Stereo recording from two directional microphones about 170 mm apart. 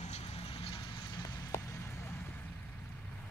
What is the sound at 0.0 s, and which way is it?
Vehicle, 40° left (ahead or behind).